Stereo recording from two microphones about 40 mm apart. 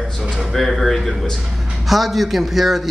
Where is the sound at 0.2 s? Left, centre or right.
Centre.